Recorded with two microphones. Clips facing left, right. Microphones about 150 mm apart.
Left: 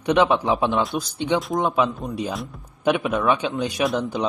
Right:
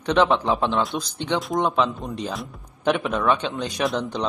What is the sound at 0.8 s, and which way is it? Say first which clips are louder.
Speech: left 1 dB; centre (ahead or behind).